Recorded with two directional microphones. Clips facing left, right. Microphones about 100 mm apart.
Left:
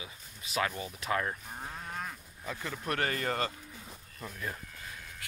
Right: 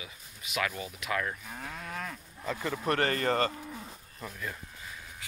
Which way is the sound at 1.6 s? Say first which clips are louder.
Right 1 dB; 90° right.